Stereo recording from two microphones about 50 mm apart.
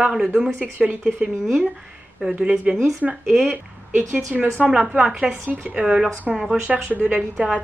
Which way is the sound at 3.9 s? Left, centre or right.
Right.